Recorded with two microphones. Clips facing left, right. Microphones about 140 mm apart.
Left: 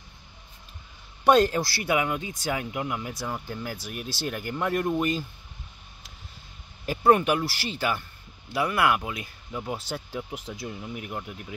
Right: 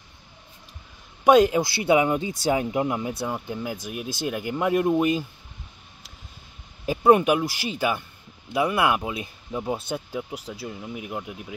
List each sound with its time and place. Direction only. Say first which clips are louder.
1.2 s speech: right 3 dB; 15° right (ahead or behind)
6.9 s speech: right 3 dB; 15° right (ahead or behind)
10.5 s speech: even; 5° right (ahead or behind)